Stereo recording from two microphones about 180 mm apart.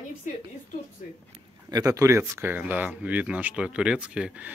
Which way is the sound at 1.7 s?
20° right (ahead or behind).